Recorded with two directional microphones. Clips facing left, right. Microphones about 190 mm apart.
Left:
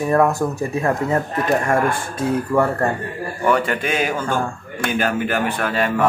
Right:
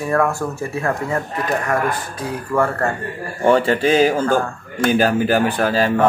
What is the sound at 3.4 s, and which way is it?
A man's voice, 30° right (ahead or behind).